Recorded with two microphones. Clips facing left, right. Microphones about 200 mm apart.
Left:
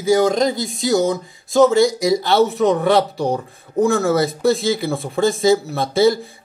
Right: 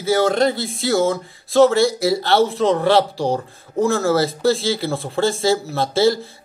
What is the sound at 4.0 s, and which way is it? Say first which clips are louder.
Speech: left 1 dB; 15° left (ahead or behind).